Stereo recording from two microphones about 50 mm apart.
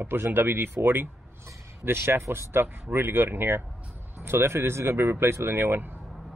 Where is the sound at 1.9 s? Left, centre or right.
Right.